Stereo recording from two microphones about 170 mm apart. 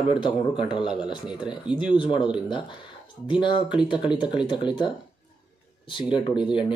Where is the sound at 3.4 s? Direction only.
25° left (ahead or behind).